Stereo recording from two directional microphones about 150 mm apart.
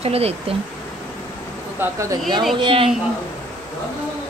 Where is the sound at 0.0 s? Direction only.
40° right (ahead or behind).